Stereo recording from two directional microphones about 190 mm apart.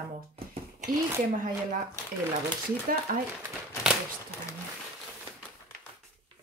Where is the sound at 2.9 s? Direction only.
50° right (ahead or behind).